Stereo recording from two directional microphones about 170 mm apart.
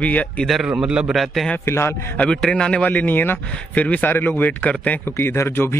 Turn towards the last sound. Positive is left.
turn(degrees=15)  # may be behind; listen again after turning